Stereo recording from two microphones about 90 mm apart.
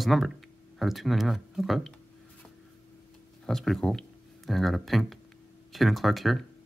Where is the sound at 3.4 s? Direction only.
5° left (ahead or behind).